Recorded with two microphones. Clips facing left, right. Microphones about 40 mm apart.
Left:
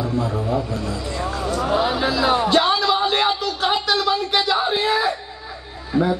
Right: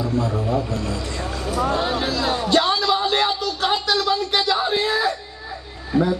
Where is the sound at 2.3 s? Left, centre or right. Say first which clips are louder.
Right 1 dB; left.